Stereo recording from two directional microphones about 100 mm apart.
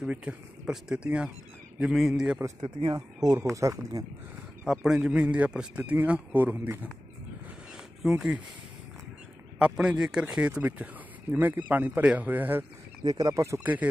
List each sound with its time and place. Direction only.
0.0 s a man's voice: 10° right (ahead or behind)
2.6 s speech: 50° right (ahead or behind)
3.3 s speech: 30° right (ahead or behind)
4.6 s speech: 5° right (ahead or behind)
8.0 s speech: 10° right (ahead or behind)
9.6 s speech: 10° right (ahead or behind)
13.0 s speech: 40° right (ahead or behind)